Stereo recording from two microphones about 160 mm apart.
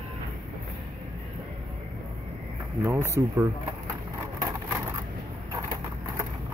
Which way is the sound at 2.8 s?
15° right (ahead or behind).